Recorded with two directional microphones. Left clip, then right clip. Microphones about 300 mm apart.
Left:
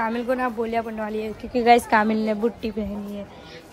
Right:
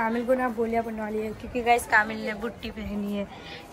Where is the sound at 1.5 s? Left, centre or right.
Left.